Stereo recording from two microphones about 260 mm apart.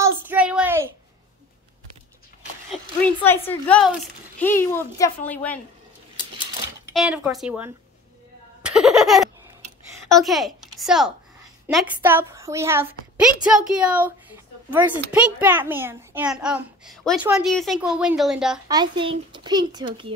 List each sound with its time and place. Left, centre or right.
0.0 s a sound: centre
3.2 s a woman's voice: centre
6.9 s a woman's voice: centre
8.6 s a sound: centre
10.1 s a child's voice: centre
18.7 s a child's voice: centre